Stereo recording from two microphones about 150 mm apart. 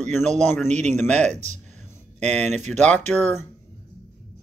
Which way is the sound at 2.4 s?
50° right (ahead or behind).